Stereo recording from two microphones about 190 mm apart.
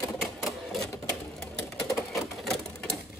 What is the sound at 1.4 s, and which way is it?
Sewing machine, centre (ahead or behind).